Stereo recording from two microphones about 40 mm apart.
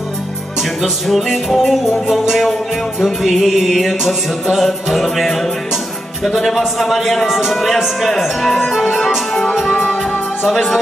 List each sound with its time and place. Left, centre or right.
0.6 s music: centre
9.3 s music: centre
10.4 s music: centre